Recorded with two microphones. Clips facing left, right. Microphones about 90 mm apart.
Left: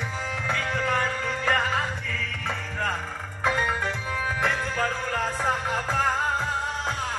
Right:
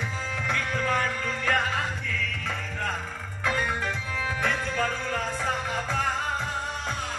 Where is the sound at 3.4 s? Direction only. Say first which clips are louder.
Left 3 dB; 25° left (ahead or behind).